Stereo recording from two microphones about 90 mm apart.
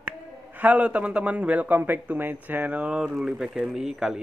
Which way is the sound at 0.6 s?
15° right (ahead or behind).